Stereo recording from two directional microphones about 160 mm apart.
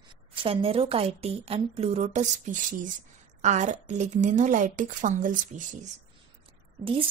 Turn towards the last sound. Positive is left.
turn(degrees=-35)  # may be behind; listen again after turning